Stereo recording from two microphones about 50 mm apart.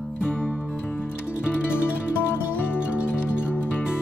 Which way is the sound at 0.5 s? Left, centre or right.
Left.